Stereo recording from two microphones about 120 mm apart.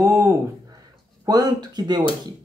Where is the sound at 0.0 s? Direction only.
20° right (ahead or behind).